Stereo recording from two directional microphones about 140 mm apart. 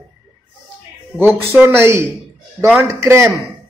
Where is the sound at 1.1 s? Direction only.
15° right (ahead or behind).